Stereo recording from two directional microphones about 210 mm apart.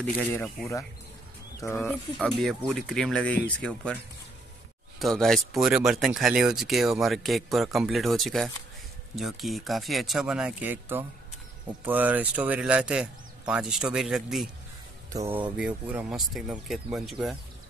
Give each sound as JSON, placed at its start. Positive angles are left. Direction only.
{"t": 0.0, "sound": "speech", "side_deg": 5}
{"t": 15.1, "sound": "speech", "side_deg": -15}